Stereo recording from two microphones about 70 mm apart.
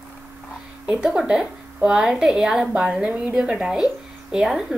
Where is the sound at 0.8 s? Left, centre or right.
Centre.